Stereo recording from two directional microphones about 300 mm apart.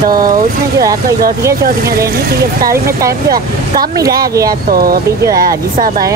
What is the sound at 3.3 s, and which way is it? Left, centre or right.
Speech, right.